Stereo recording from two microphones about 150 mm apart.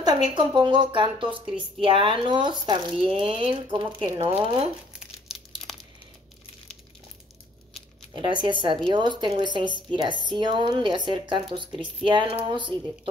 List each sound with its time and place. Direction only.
0.0 s speech: 30° right (ahead or behind)
5.0 s crumpling: centre (ahead or behind)
8.1 s speech: 30° right (ahead or behind)